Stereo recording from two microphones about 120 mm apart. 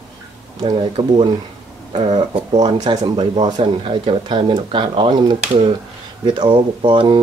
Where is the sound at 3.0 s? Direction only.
45° right (ahead or behind).